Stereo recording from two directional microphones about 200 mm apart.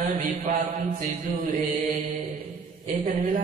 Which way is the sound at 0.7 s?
40° right (ahead or behind).